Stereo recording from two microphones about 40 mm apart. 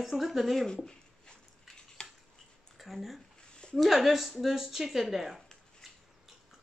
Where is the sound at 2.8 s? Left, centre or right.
Centre.